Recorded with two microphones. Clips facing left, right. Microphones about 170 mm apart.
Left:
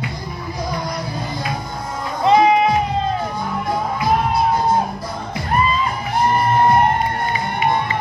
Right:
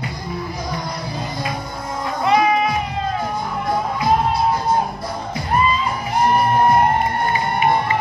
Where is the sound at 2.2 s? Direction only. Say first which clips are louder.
Left 3 dB; 25° left (ahead or behind).